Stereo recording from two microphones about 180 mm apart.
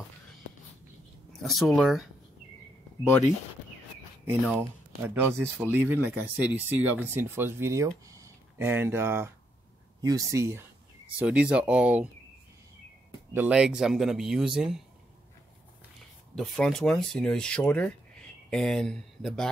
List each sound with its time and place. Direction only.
1.3 s speech: centre (ahead or behind)
4.6 s speech: 10° right (ahead or behind)
13.3 s speech: 10° right (ahead or behind)
16.3 s speech: centre (ahead or behind)